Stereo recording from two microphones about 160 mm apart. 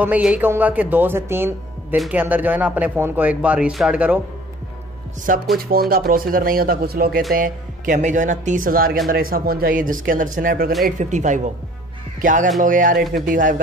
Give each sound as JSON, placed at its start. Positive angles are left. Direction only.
{"t": 0.0, "sound": "speech", "side_deg": -10}
{"t": 5.3, "sound": "speech", "side_deg": -55}
{"t": 5.6, "sound": "speech", "side_deg": -70}
{"t": 7.3, "sound": "speech", "side_deg": -55}
{"t": 11.0, "sound": "speech", "side_deg": -50}